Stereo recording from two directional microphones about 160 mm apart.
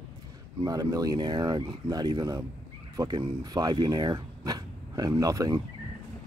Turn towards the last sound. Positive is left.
turn(degrees=-20)  # may be behind; listen again after turning